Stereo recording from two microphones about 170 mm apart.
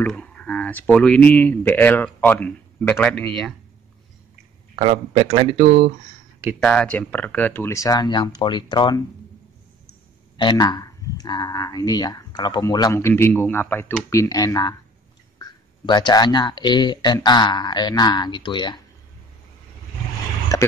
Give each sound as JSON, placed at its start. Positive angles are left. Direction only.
{"t": 0.0, "sound": "speech", "side_deg": 5}
{"t": 4.7, "sound": "speech", "side_deg": -40}
{"t": 6.6, "sound": "speech", "side_deg": 5}
{"t": 10.3, "sound": "speech", "side_deg": 25}
{"t": 20.5, "sound": "a sound", "side_deg": 20}